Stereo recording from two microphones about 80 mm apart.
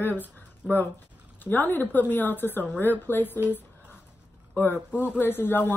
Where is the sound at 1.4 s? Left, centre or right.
Left.